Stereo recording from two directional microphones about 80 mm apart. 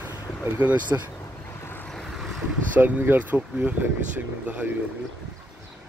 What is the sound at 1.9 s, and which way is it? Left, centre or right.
Vehicle, centre.